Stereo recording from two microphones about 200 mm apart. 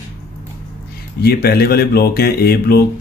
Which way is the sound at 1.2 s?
50° left (ahead or behind).